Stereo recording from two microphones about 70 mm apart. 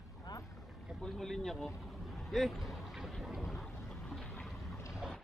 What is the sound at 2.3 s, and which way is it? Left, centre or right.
Vehicle, centre.